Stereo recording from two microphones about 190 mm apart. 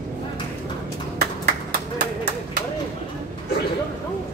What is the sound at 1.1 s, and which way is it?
Clapping, 60° right (ahead or behind).